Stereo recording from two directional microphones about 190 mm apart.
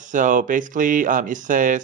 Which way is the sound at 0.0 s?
40° right (ahead or behind).